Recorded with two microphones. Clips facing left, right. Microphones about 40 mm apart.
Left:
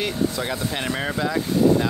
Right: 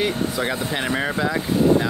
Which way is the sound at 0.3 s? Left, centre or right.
Centre.